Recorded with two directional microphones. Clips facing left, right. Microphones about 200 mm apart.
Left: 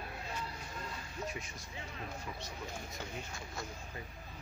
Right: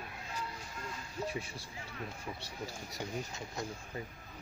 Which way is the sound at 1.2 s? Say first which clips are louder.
Right 4 dB; 30° right (ahead or behind).